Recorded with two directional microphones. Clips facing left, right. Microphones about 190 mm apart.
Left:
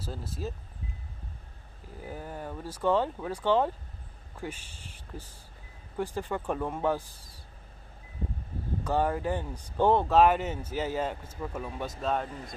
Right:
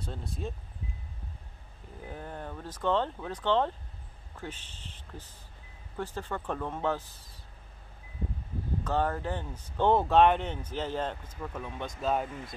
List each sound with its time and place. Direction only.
0.0 s speech: 5° left (ahead or behind)
2.0 s speech: 5° left (ahead or behind)
8.8 s speech: 10° left (ahead or behind)
12.3 s speech: 35° left (ahead or behind)